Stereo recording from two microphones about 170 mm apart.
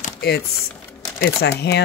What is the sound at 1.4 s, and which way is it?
Speech, 75° left (ahead or behind).